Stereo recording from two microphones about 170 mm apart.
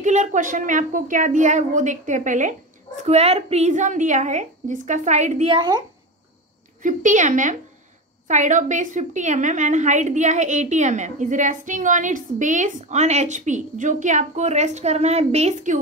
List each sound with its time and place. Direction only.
0.0 s a woman's voice: 45° right (ahead or behind)
5.5 s speech: 25° right (ahead or behind)
6.8 s a woman's voice: 45° right (ahead or behind)